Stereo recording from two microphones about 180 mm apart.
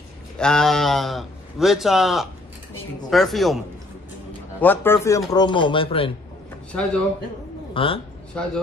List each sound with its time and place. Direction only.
0.4 s a man's voice: 5° left (ahead or behind)
4.6 s a man's voice: 10° left (ahead or behind)
5.3 s speech: 25° left (ahead or behind)
6.7 s a man's voice: 5° left (ahead or behind)
7.7 s a man's voice: 30° left (ahead or behind)